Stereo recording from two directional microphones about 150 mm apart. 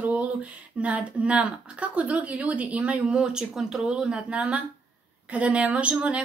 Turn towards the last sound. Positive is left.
turn(degrees=-10)  # may be behind; listen again after turning